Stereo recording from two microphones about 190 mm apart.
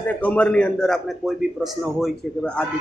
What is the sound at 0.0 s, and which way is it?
A man's voice, 5° left (ahead or behind).